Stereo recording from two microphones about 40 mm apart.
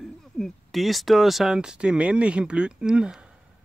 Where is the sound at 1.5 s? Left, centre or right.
Right.